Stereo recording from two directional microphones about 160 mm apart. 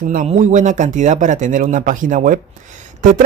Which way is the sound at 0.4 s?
50° right (ahead or behind).